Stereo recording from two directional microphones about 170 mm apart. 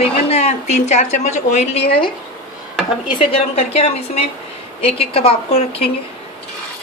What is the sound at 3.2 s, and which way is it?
A woman's voice, 35° left (ahead or behind).